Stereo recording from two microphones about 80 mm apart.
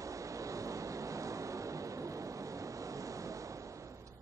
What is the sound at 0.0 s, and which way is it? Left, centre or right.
Vehicle, right.